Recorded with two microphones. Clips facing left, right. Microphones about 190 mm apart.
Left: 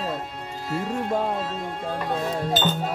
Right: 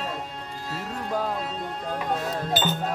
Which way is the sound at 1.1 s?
25° left (ahead or behind).